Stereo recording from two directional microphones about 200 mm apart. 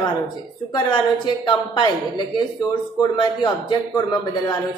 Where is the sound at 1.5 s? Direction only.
20° left (ahead or behind).